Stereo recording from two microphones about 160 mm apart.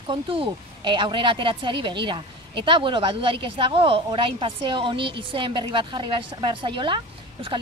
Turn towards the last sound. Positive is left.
turn(degrees=-30)  # may be behind; listen again after turning